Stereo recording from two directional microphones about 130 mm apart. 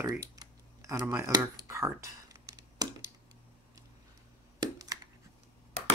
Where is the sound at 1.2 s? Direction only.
25° right (ahead or behind).